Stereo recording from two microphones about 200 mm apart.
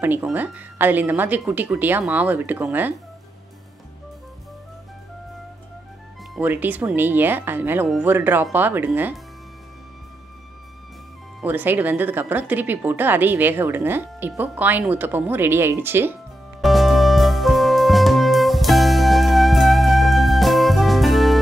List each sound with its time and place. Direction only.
0.0 s a woman's voice: 10° right (ahead or behind)
6.3 s a woman's voice: 10° right (ahead or behind)
11.4 s a woman's voice: 10° right (ahead or behind)
16.6 s music: centre (ahead or behind)